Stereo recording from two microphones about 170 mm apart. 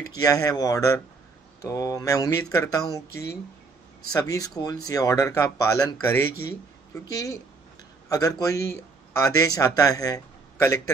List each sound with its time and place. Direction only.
0.2 s speech: 20° left (ahead or behind)
4.1 s speech: 20° left (ahead or behind)